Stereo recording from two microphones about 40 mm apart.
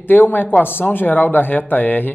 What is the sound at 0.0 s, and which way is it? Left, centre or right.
Speech, left.